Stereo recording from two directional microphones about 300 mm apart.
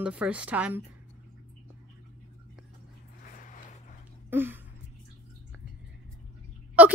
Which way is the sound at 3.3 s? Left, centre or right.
Left.